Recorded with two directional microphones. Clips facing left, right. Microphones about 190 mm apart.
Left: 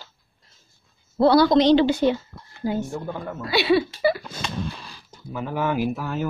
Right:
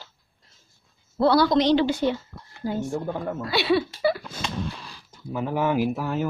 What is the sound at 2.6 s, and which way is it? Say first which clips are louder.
A woman's voice: left 1 dB; 10° left (ahead or behind).